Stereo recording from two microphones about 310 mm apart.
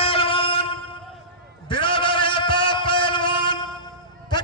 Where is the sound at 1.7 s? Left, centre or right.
Centre.